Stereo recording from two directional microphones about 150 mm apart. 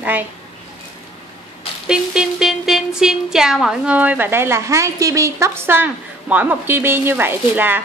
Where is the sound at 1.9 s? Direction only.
5° right (ahead or behind).